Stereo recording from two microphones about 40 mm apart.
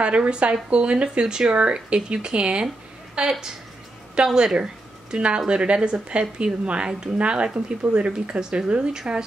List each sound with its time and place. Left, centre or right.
0.0 s speech: right
3.2 s a woman's voice: centre